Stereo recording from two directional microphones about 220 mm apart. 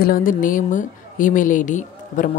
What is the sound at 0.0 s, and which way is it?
A woman's voice, 40° left (ahead or behind).